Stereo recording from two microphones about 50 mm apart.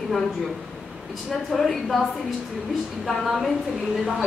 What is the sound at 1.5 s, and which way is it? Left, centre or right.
Speech, centre.